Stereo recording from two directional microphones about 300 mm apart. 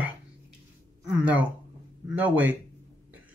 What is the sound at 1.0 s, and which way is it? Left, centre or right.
Speech, centre.